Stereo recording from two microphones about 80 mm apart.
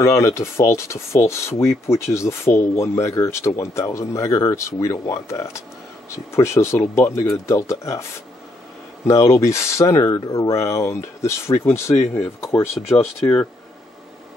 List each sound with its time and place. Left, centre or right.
0.0 s speech: left
10.1 s speech: left
12.9 s speech: centre